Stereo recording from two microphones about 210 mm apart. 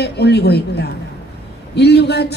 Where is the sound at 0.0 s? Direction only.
50° left (ahead or behind).